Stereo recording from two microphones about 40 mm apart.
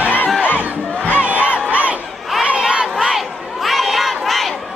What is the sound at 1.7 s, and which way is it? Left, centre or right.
Battle cry, right.